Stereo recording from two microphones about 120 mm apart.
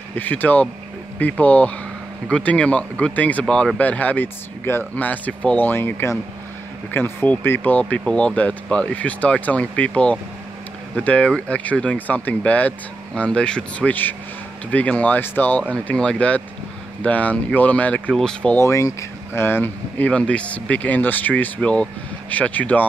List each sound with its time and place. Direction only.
0.1 s speech: 15° left (ahead or behind)
18.6 s speech: 25° left (ahead or behind)